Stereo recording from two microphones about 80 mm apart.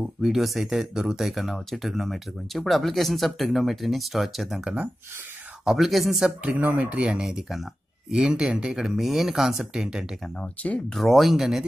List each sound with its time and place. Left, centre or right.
0.2 s speech: centre
5.7 s speech: centre
6.4 s speech: centre
10.4 s speech: centre
10.9 s speech: centre